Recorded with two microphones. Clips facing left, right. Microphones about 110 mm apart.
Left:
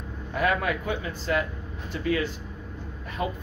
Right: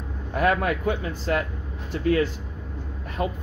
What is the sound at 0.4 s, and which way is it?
Speech, 45° right (ahead or behind).